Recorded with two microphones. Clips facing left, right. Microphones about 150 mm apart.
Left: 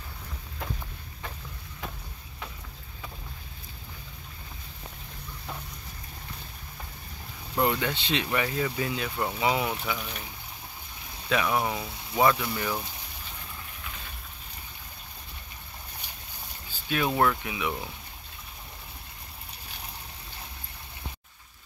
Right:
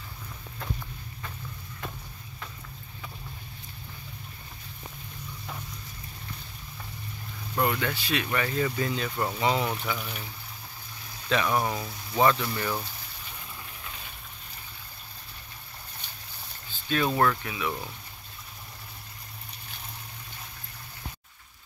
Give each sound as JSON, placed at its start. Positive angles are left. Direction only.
{"t": 7.5, "sound": "speech", "side_deg": 20}
{"t": 11.2, "sound": "speech", "side_deg": 5}
{"t": 16.7, "sound": "speech", "side_deg": 10}